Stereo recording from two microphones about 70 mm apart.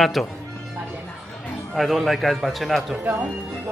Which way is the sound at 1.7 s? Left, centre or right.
Centre.